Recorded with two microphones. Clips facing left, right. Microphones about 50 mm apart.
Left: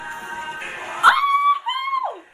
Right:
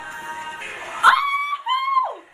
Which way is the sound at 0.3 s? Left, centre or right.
Centre.